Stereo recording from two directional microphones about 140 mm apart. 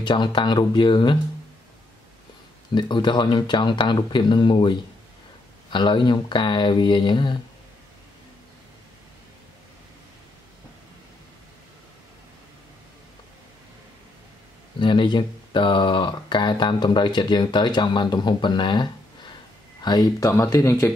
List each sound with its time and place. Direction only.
0.0 s speech: 35° left (ahead or behind)
2.7 s speech: 35° left (ahead or behind)
14.8 s speech: 35° left (ahead or behind); by 20.9 s 20° left (ahead or behind)